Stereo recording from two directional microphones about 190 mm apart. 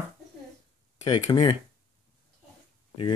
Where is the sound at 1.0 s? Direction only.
25° left (ahead or behind).